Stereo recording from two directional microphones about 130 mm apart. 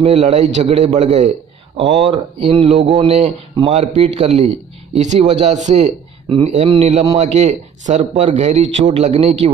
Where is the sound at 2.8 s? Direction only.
60° right (ahead or behind).